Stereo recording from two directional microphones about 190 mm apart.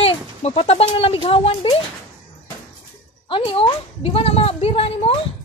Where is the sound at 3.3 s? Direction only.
30° left (ahead or behind).